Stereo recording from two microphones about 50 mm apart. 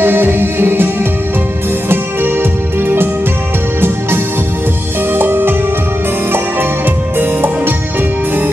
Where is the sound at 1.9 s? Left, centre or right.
Right.